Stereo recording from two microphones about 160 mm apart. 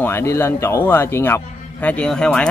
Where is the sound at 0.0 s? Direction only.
15° left (ahead or behind).